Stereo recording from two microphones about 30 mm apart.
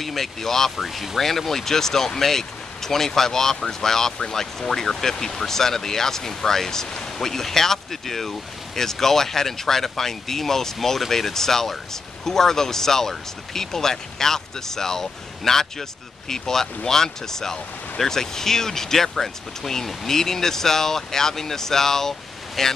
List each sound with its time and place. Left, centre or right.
0.0 s speech: centre
0.8 s speech: centre